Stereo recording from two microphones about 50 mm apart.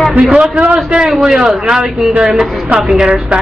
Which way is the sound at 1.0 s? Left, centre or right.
Centre.